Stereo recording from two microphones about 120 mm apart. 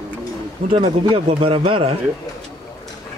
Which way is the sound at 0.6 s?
50° right (ahead or behind).